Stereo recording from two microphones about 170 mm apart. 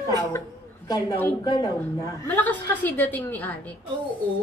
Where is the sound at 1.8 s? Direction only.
10° left (ahead or behind).